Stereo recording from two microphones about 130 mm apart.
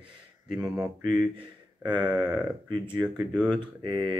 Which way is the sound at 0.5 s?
5° right (ahead or behind).